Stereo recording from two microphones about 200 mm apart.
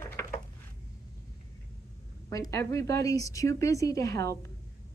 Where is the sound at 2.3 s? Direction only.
15° left (ahead or behind).